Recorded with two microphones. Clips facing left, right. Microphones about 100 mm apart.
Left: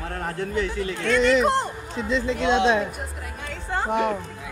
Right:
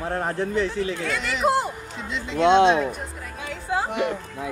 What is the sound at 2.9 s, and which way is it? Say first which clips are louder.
Music: right 2 dB; centre (ahead or behind).